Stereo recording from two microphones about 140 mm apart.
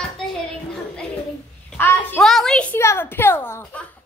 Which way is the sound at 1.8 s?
15° left (ahead or behind).